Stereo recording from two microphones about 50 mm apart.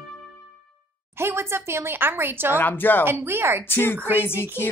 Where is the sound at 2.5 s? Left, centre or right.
Left.